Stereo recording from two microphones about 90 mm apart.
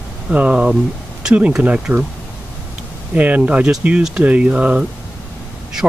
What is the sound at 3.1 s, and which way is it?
Speech, 15° right (ahead or behind).